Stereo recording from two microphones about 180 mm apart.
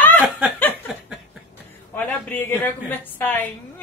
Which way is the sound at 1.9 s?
10° left (ahead or behind).